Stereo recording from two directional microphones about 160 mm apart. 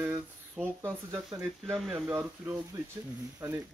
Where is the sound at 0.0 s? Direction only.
10° right (ahead or behind).